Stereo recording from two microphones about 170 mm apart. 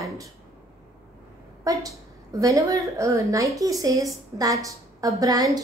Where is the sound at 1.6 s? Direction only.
20° right (ahead or behind).